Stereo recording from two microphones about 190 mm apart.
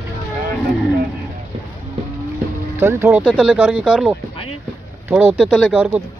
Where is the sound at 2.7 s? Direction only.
15° right (ahead or behind).